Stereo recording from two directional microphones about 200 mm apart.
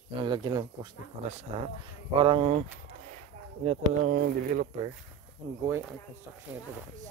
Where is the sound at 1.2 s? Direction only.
35° right (ahead or behind).